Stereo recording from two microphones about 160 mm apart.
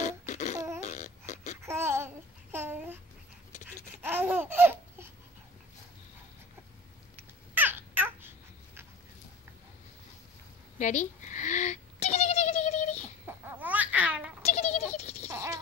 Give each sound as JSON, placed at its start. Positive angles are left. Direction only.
{"t": 0.0, "sound": "a sound", "side_deg": 50}
{"t": 0.8, "sound": "babbling", "side_deg": 50}
{"t": 1.6, "sound": "babbling", "side_deg": -15}
{"t": 4.0, "sound": "laughter", "side_deg": -10}
{"t": 7.5, "sound": "babbling", "side_deg": -10}
{"t": 10.8, "sound": "a sound", "side_deg": 50}
{"t": 13.3, "sound": "babbling", "side_deg": -10}
{"t": 14.4, "sound": "goat", "side_deg": 40}